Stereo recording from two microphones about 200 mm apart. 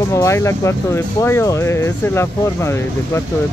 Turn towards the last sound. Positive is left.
turn(degrees=15)  # may be behind; listen again after turning